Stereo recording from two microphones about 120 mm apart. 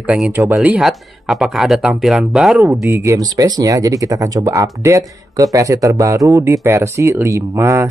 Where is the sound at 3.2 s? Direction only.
35° right (ahead or behind).